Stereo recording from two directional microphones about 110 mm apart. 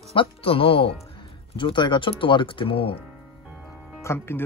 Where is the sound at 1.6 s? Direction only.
45° left (ahead or behind).